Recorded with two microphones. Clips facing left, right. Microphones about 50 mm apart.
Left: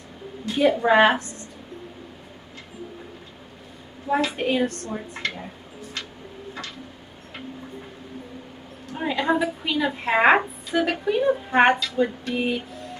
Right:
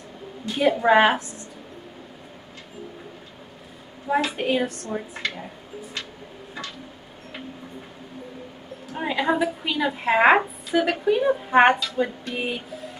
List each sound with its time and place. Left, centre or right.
0.6 s a woman's voice: centre
4.1 s a woman's voice: centre
8.9 s a woman's voice: centre